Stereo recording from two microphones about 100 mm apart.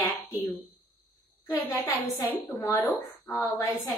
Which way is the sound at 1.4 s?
35° left (ahead or behind).